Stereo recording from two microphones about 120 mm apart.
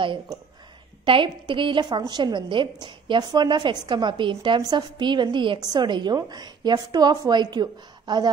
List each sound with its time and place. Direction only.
1.0 s a woman's voice: 45° right (ahead or behind)